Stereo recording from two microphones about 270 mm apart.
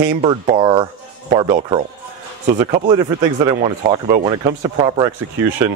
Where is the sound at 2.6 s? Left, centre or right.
Right.